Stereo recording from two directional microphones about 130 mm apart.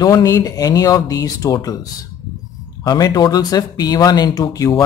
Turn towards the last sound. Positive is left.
turn(degrees=30)  # may be behind; listen again after turning